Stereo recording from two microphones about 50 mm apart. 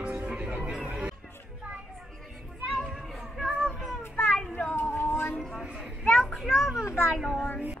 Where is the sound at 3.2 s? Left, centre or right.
Centre.